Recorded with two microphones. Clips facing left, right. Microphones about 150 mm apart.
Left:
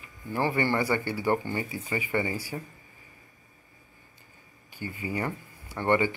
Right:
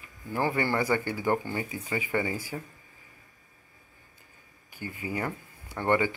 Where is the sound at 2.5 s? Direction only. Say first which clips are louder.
Left 1 dB; 5° left (ahead or behind).